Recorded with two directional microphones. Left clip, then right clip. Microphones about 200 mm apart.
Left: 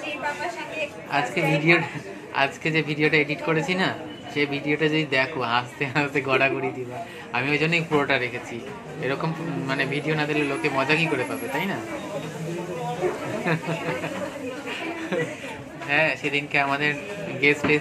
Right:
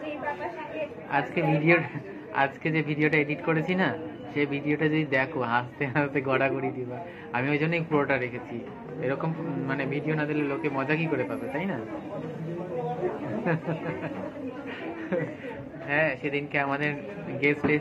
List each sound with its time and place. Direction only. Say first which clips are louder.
1.1 s a man's voice: left 3 dB; 10° left (ahead or behind)
15.9 s a man's voice: left 4 dB; 10° left (ahead or behind)